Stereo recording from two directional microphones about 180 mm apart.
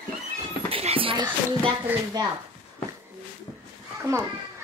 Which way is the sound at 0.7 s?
30° right (ahead or behind).